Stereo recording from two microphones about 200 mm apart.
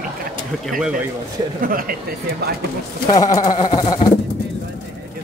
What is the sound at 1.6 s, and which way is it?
Speech, 45° right (ahead or behind).